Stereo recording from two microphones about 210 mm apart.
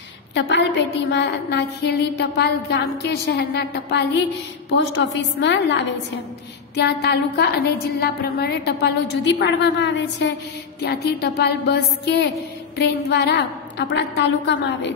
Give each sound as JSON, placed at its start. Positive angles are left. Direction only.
{"t": 0.3, "sound": "a woman's voice", "side_deg": 60}